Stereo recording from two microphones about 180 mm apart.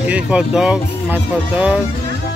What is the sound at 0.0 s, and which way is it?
Speech, 5° right (ahead or behind).